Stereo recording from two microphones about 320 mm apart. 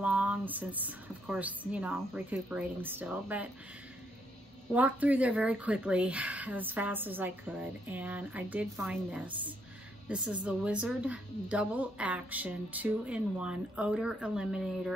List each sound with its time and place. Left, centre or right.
0.0 s speech: centre
4.7 s speech: centre